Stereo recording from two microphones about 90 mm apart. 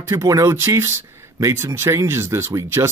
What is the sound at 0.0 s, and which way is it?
A man's voice, 35° right (ahead or behind).